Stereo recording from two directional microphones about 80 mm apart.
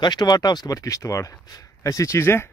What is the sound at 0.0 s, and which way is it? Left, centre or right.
Speech, left.